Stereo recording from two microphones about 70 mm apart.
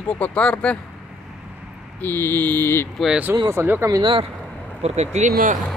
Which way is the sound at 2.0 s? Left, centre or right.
Left.